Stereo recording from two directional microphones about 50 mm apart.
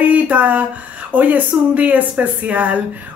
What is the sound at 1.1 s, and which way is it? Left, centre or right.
A woman's voice, right.